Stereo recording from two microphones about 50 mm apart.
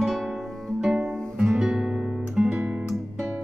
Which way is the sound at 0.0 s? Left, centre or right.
Centre.